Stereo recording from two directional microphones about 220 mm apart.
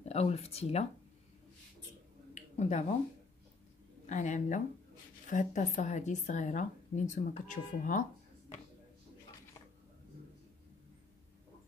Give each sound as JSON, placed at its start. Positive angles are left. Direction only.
{"t": 0.0, "sound": "speech", "side_deg": 30}
{"t": 2.3, "sound": "a sound", "side_deg": 30}
{"t": 4.1, "sound": "a woman's voice", "side_deg": 35}